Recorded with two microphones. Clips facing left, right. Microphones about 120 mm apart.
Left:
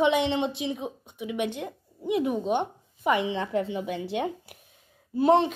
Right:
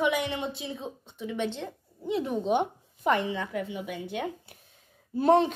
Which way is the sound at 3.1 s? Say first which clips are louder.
Left 6 dB; 20° left (ahead or behind).